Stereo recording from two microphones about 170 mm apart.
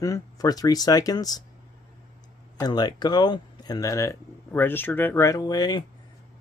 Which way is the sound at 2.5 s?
25° left (ahead or behind).